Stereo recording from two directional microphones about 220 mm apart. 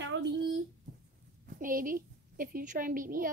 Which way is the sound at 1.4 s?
40° right (ahead or behind).